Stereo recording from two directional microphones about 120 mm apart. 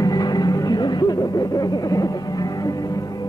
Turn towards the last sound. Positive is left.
turn(degrees=30)  # may be behind; listen again after turning